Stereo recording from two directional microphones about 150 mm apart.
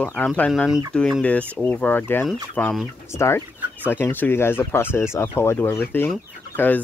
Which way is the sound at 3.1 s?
20° left (ahead or behind).